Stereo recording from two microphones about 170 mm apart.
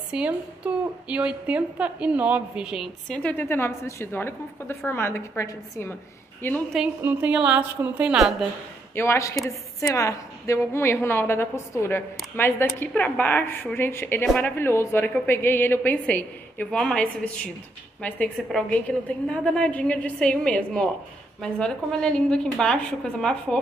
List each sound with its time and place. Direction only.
0.1 s a woman's voice: 5° right (ahead or behind); by 6.6 s 15° left (ahead or behind)
7.0 s a woman's voice: 10° right (ahead or behind)
8.9 s a woman's voice: 15° left (ahead or behind)